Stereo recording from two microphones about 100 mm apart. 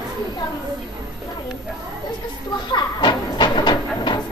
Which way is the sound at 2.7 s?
50° left (ahead or behind).